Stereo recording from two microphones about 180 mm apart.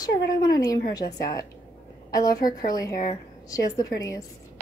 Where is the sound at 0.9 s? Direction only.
20° left (ahead or behind).